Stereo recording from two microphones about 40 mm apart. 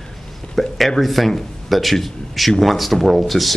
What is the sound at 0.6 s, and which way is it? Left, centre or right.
Speech, centre.